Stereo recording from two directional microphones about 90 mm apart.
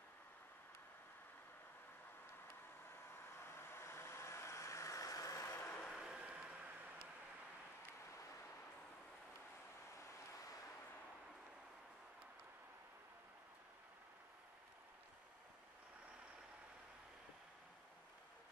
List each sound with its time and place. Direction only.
3.3 s vehicle: 25° left (ahead or behind)
5.9 s vehicle: 5° right (ahead or behind)